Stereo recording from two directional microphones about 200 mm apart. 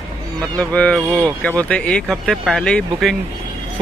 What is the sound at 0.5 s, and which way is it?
Speech, 5° left (ahead or behind).